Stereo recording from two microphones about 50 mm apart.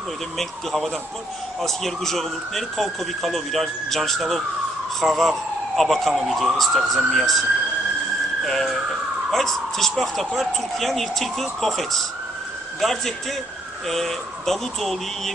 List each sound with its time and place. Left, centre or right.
0.4 s speech: centre
8.5 s speech: centre